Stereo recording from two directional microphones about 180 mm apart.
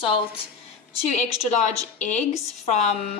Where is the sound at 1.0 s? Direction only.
40° left (ahead or behind).